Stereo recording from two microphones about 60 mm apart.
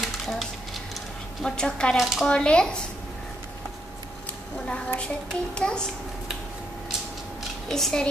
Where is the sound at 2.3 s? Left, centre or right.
Centre.